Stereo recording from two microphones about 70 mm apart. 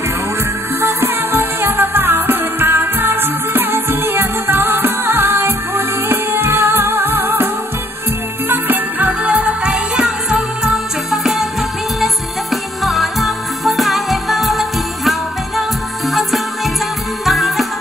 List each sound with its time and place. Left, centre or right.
0.7 s music: right
8.5 s music: right; by 11.4 s centre
12.8 s music: centre